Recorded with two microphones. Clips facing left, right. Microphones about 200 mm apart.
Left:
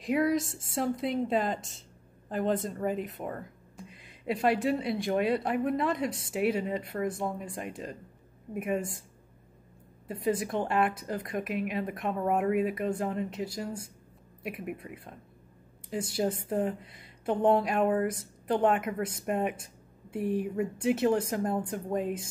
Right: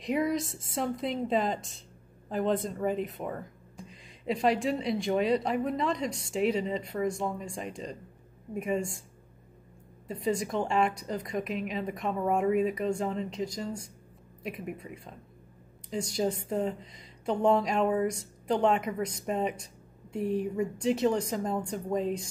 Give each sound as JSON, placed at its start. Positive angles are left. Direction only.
{"t": 0.0, "sound": "a woman's voice", "side_deg": 0}
{"t": 10.2, "sound": "a woman's voice", "side_deg": 5}